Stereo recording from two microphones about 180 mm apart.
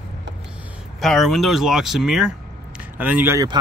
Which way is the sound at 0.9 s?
Centre (ahead or behind).